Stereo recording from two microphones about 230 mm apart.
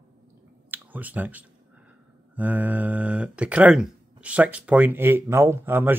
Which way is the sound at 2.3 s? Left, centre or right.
Centre.